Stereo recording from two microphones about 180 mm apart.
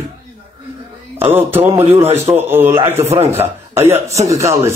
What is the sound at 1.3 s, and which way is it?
Speech, 10° right (ahead or behind).